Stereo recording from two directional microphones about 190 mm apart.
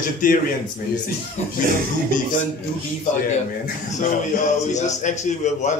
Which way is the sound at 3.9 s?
40° left (ahead or behind).